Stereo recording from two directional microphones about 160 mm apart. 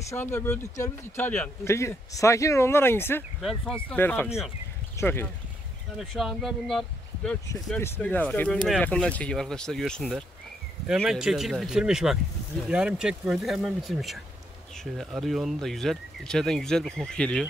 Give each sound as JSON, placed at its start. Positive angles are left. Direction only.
{"t": 0.1, "sound": "speech", "side_deg": 15}
{"t": 3.3, "sound": "speech", "side_deg": 0}
{"t": 3.9, "sound": "speech", "side_deg": 10}
{"t": 5.9, "sound": "speech", "side_deg": 0}